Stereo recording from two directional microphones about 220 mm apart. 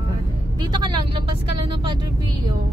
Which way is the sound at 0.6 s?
20° right (ahead or behind).